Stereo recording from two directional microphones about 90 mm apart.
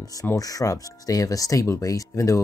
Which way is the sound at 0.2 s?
40° left (ahead or behind).